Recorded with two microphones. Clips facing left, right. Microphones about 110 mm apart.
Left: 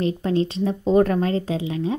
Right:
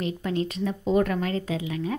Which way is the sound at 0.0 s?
30° left (ahead or behind).